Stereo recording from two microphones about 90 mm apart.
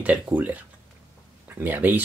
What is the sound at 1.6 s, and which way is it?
Speech, 20° right (ahead or behind).